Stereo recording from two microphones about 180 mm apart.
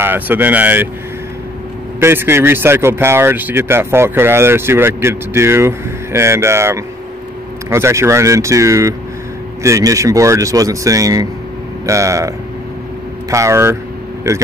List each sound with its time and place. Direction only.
0.0 s speech: 10° right (ahead or behind)
2.0 s speech: 15° right (ahead or behind)